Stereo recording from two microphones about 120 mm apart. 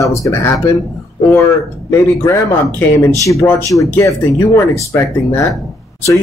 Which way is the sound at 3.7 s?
25° left (ahead or behind).